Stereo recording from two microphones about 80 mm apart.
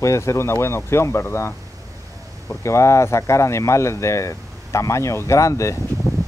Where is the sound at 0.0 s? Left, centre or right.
Left.